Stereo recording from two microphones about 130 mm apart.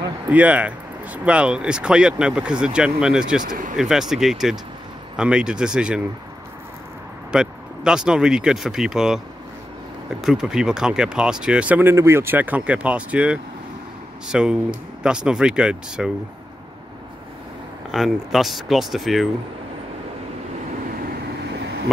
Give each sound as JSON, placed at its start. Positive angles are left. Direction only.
{"t": 0.3, "sound": "speech", "side_deg": -10}
{"t": 3.4, "sound": "speech", "side_deg": -85}
{"t": 3.7, "sound": "speech", "side_deg": -5}
{"t": 7.3, "sound": "speech", "side_deg": -5}
{"t": 10.2, "sound": "speech", "side_deg": -5}
{"t": 17.9, "sound": "speech", "side_deg": 0}